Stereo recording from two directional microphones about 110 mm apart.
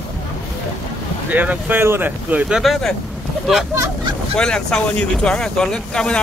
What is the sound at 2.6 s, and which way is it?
Speech, centre (ahead or behind).